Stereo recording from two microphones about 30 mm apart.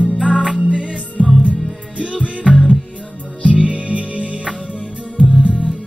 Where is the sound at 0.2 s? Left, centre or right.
Left.